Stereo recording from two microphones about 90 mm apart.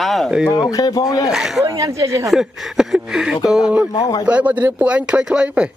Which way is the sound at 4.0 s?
45° left (ahead or behind).